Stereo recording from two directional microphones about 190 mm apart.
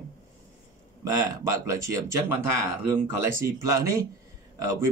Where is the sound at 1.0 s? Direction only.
15° right (ahead or behind).